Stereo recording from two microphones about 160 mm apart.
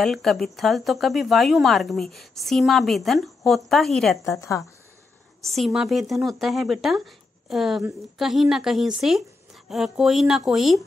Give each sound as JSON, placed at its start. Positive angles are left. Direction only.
{"t": 0.0, "sound": "speech", "side_deg": 0}
{"t": 4.2, "sound": "a woman's voice", "side_deg": 20}
{"t": 5.4, "sound": "speech", "side_deg": 0}